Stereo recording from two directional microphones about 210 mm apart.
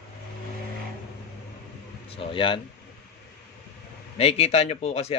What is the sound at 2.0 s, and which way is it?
Speech, 25° left (ahead or behind).